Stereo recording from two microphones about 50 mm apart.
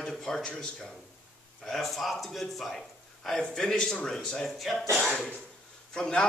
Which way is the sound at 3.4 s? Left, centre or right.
Centre.